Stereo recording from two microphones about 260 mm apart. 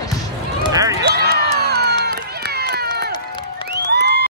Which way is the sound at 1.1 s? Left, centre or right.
Right.